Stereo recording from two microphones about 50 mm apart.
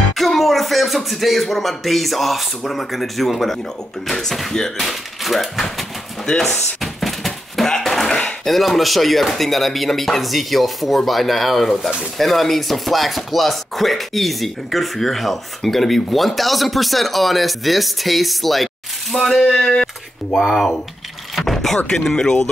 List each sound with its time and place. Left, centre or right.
0.1 s speech: centre
6.2 s a sound: centre
8.1 s a sound: centre
8.5 s speech: centre
19.5 s speech: centre
20.2 s speech: centre